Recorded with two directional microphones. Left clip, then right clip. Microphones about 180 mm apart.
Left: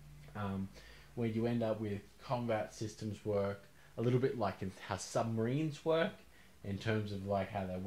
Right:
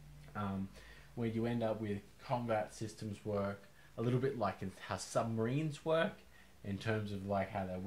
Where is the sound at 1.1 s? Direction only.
30° left (ahead or behind).